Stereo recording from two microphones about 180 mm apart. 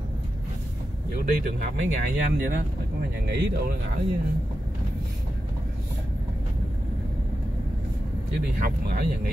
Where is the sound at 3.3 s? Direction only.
60° right (ahead or behind).